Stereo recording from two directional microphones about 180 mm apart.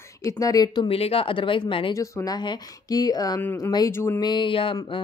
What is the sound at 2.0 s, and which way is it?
A woman's voice, 20° left (ahead or behind).